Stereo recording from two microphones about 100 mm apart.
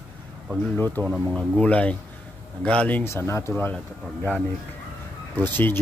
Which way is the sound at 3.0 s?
25° left (ahead or behind).